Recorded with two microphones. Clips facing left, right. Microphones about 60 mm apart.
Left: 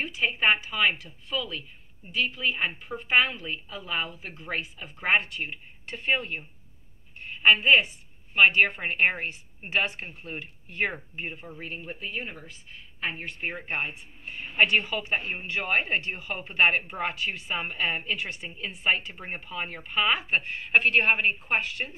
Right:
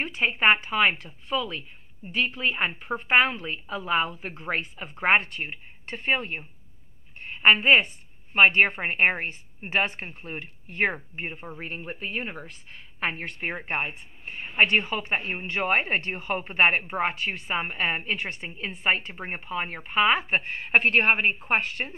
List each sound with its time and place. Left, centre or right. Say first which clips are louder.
0.0 s a woman's voice: right 3 dB; right